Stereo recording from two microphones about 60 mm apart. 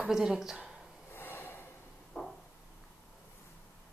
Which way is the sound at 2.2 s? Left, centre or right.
Centre.